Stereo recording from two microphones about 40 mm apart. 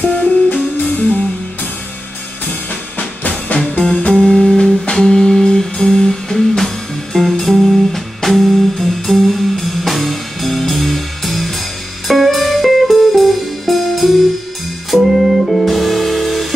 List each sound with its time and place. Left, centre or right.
0.5 s music: left
2.7 s music: left
3.8 s music: centre